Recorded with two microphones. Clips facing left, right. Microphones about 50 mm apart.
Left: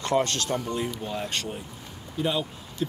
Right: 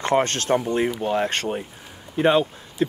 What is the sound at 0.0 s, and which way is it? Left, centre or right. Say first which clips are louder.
Speech: right 4 dB; right.